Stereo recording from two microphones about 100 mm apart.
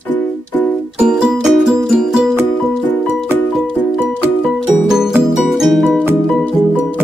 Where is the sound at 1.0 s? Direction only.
5° right (ahead or behind).